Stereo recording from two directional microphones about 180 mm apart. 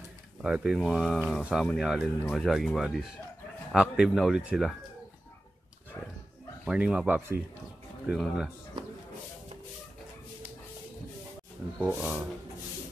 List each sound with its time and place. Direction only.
0.4 s speech: 5° right (ahead or behind)
6.6 s speech: 5° right (ahead or behind)
8.1 s speech: centre (ahead or behind)
11.8 s speech: 5° left (ahead or behind)